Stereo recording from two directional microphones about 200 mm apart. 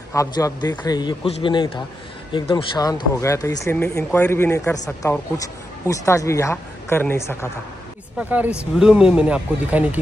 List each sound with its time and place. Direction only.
0.1 s a man's voice: 15° left (ahead or behind)
5.9 s speech: 15° left (ahead or behind)
8.2 s speech: 5° right (ahead or behind)